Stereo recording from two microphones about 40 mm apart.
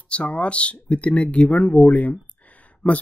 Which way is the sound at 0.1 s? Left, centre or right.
Left.